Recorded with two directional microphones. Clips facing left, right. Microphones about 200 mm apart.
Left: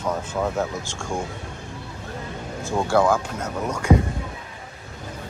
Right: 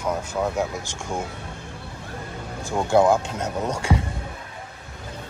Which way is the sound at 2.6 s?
15° right (ahead or behind).